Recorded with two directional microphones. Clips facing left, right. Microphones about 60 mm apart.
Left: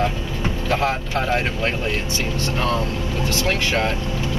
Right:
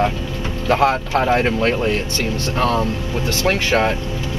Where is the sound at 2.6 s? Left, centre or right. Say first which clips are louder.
Right 5 dB; right.